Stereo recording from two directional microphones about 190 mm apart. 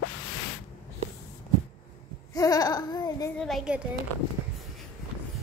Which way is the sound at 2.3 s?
20° left (ahead or behind).